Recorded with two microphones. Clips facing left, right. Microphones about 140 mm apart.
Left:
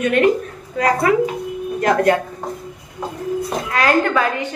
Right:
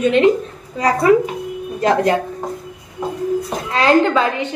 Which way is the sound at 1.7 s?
25° right (ahead or behind).